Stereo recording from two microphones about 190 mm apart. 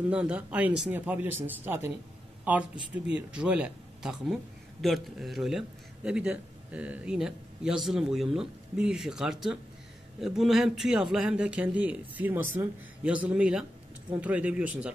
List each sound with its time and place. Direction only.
0.1 s speech: 5° right (ahead or behind)